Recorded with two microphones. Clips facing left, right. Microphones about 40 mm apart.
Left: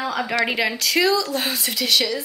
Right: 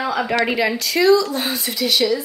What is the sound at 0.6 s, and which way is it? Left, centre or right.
Speech, centre.